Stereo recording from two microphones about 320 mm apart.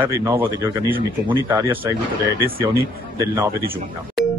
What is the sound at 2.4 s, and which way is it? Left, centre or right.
Speech, right.